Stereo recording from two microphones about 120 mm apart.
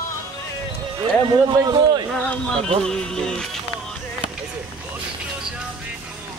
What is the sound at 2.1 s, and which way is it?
Speech, 5° left (ahead or behind).